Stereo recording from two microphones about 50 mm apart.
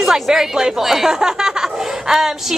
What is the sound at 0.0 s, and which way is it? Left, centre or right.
A woman's voice, centre.